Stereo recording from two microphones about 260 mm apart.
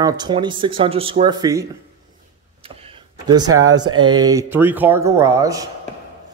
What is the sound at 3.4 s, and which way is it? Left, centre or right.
Speech, right.